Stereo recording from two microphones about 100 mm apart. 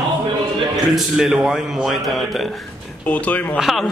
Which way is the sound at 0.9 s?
5° right (ahead or behind).